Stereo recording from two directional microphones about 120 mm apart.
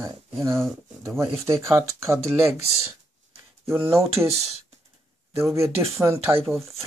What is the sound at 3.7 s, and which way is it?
Speech, 20° right (ahead or behind).